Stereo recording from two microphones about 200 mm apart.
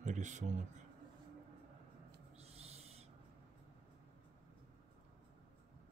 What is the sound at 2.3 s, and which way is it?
Owl, 30° right (ahead or behind).